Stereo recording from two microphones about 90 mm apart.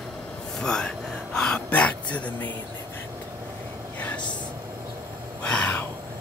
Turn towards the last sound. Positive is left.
turn(degrees=15)  # may be behind; listen again after turning